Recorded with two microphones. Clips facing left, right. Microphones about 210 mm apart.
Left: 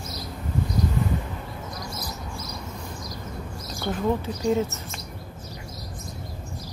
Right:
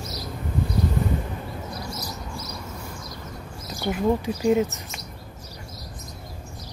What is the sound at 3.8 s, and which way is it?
Speech, 10° right (ahead or behind).